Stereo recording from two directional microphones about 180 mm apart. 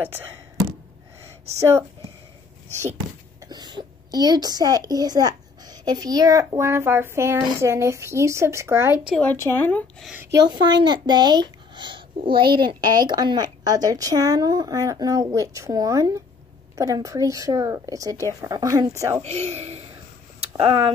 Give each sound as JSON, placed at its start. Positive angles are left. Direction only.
{"t": 0.0, "sound": "a woman's voice", "side_deg": -10}
{"t": 1.6, "sound": "a woman's voice", "side_deg": -15}
{"t": 3.4, "sound": "a woman's voice", "side_deg": -25}
{"t": 9.1, "sound": "a woman's voice", "side_deg": 10}
{"t": 10.1, "sound": "speech", "side_deg": -20}
{"t": 19.2, "sound": "speech", "side_deg": -35}